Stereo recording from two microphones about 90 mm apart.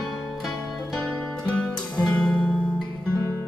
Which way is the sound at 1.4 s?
15° left (ahead or behind).